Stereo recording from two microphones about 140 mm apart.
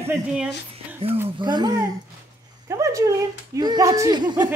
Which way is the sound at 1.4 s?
30° right (ahead or behind).